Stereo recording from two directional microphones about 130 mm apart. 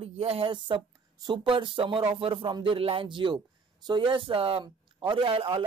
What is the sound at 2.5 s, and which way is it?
Speech, 40° right (ahead or behind).